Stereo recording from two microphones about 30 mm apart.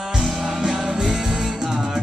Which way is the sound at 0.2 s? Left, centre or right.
Centre.